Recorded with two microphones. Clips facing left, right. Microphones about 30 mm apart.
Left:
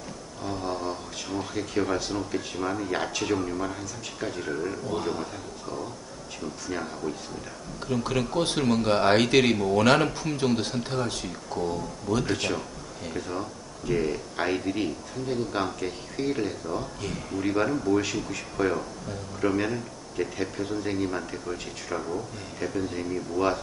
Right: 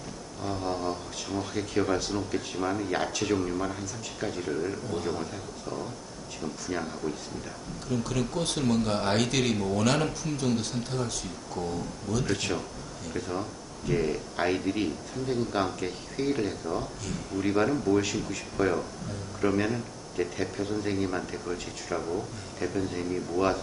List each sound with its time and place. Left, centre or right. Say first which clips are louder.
0.4 s speech: even; centre
7.9 s a man's voice: left 3 dB; left
11.2 s speech: left 4 dB; centre